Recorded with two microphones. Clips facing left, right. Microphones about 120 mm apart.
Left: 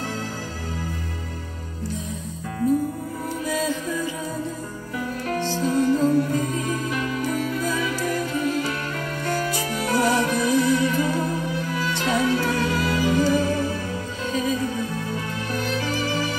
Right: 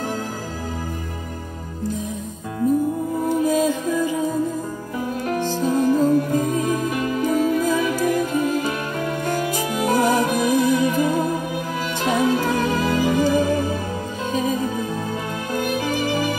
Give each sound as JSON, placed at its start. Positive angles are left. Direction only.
{"t": 3.3, "sound": "music", "side_deg": -45}
{"t": 5.4, "sound": "music", "side_deg": -45}
{"t": 9.7, "sound": "music", "side_deg": -15}
{"t": 10.1, "sound": "music", "side_deg": -50}